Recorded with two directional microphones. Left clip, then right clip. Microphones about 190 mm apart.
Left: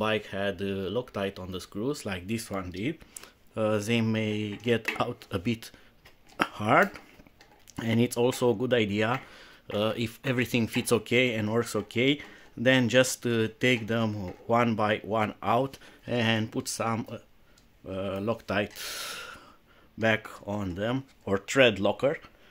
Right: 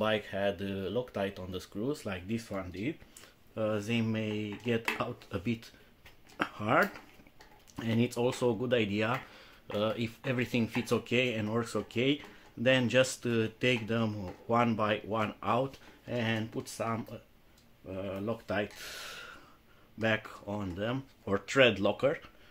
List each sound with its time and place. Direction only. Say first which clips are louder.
0.0 s speech: left 2 dB; 35° left (ahead or behind)
6.3 s shuffling cards: left 5 dB; 50° left (ahead or behind)
7.7 s speech: left 5 dB; 40° left (ahead or behind)
16.1 s speech: left 6 dB; 60° left (ahead or behind)
20.0 s speech: left 5 dB; 40° left (ahead or behind)